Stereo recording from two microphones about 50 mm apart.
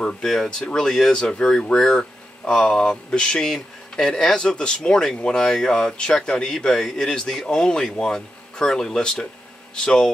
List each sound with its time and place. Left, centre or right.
0.0 s speech: centre
2.9 s speech: centre